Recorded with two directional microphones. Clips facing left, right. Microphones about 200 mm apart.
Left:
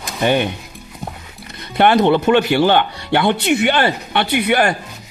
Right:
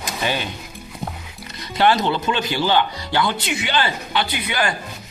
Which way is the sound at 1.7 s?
60° left (ahead or behind).